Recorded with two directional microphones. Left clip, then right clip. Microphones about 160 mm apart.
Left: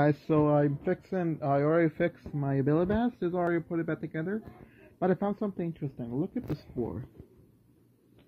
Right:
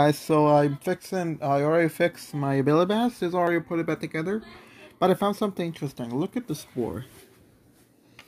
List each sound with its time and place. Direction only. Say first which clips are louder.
0.0 s speech: right 6 dB; 25° right (ahead or behind)